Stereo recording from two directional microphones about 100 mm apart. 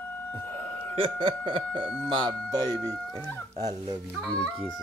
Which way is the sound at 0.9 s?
60° right (ahead or behind).